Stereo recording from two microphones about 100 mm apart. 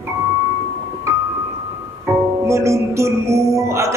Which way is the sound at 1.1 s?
30° right (ahead or behind).